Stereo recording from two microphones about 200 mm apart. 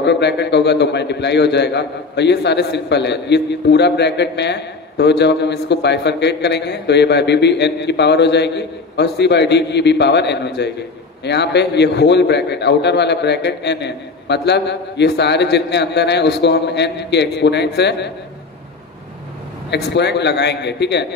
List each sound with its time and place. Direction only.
0.0 s a man's voice: 60° left (ahead or behind)
19.7 s a man's voice: 60° left (ahead or behind)